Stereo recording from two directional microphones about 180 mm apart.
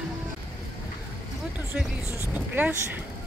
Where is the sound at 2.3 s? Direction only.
10° right (ahead or behind).